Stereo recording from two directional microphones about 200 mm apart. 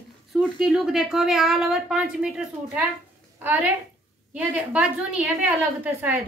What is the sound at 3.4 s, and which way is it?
A woman's voice, 10° right (ahead or behind).